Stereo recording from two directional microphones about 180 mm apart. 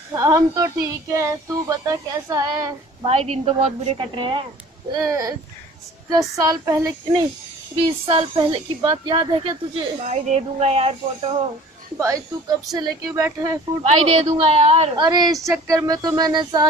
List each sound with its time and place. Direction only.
0.1 s speech: 15° right (ahead or behind)
3.1 s speech: 35° right (ahead or behind); by 7.2 s 15° right (ahead or behind)
7.7 s speech: 30° right (ahead or behind)
12.7 s speech: 20° right (ahead or behind)
13.8 s speech: 35° right (ahead or behind)
15.0 s speech: 20° right (ahead or behind)